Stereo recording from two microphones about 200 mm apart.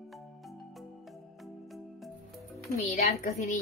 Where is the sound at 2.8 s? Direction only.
30° left (ahead or behind).